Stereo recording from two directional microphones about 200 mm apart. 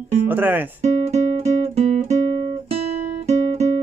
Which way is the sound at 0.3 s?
10° right (ahead or behind).